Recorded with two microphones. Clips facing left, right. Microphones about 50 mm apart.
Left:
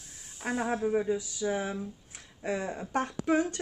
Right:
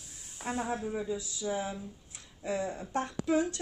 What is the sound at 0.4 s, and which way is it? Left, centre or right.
Speech, left.